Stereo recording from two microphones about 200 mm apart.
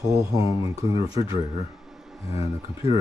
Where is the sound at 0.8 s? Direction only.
30° left (ahead or behind).